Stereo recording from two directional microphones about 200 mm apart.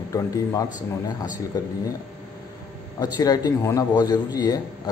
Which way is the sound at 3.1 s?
20° left (ahead or behind).